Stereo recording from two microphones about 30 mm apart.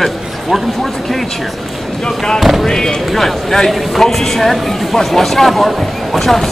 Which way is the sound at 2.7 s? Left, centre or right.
Left.